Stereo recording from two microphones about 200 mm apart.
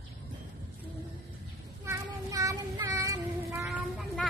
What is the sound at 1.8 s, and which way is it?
Child singing, 15° right (ahead or behind).